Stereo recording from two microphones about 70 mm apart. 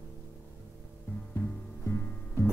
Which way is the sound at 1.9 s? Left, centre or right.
Left.